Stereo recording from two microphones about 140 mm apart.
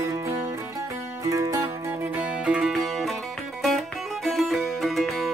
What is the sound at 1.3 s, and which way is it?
Music, 25° right (ahead or behind).